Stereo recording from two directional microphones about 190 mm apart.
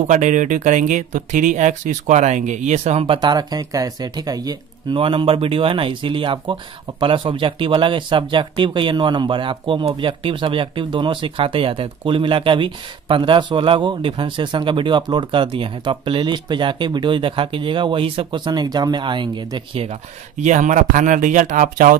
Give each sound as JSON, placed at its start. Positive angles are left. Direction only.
{"t": 0.0, "sound": "speech", "side_deg": -40}
{"t": 20.4, "sound": "speech", "side_deg": -40}